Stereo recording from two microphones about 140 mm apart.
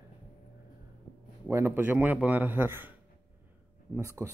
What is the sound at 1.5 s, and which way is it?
A man's voice, 15° right (ahead or behind).